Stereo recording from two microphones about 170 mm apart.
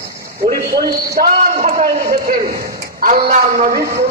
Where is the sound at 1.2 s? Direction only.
50° right (ahead or behind).